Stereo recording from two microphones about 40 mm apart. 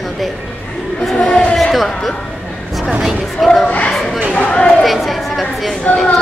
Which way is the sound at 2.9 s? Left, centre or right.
Centre.